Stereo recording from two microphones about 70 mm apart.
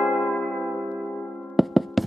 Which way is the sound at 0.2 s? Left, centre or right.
Left.